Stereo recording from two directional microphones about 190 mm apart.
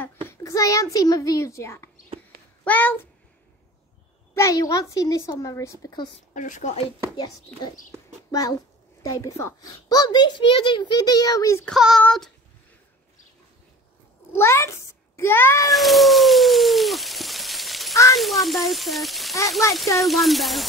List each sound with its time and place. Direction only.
0.3 s a child's voice: 15° left (ahead or behind)
4.4 s a woman's voice: 15° left (ahead or behind)
6.3 s speech: 40° left (ahead or behind)
8.3 s a child's voice: 20° left (ahead or behind)
11.7 s a child's voice: centre (ahead or behind)
14.3 s a woman's voice: 15° left (ahead or behind)
15.7 s cat: centre (ahead or behind)
18.1 s a child's voice: centre (ahead or behind)